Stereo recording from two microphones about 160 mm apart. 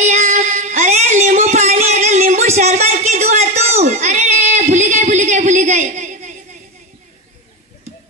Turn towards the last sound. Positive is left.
turn(degrees=-50)  # may be behind; listen again after turning